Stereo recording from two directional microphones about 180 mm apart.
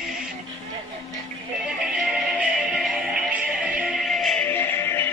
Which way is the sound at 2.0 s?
5° right (ahead or behind).